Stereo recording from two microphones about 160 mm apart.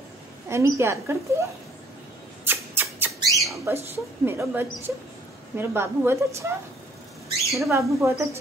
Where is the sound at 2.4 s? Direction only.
10° right (ahead or behind).